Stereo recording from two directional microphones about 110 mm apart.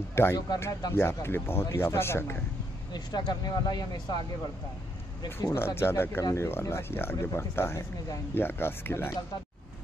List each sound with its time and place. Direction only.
0.1 s speech: 25° left (ahead or behind)
2.9 s speech: 40° left (ahead or behind)
5.2 s speech: 30° left (ahead or behind)